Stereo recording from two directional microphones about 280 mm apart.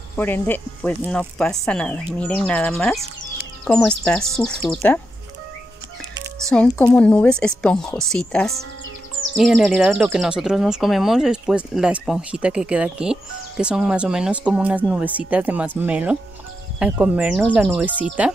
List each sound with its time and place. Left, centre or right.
0.1 s speech: centre
6.4 s speech: centre